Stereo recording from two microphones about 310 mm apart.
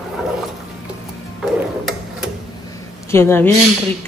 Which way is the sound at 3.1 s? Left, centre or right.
Centre.